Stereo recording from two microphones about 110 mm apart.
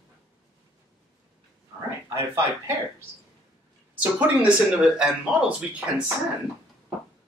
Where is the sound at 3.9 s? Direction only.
10° right (ahead or behind).